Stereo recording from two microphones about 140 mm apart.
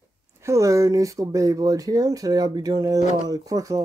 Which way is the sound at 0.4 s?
20° right (ahead or behind).